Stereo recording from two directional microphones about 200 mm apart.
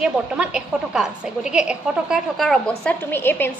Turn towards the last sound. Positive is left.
turn(degrees=10)  # may be behind; listen again after turning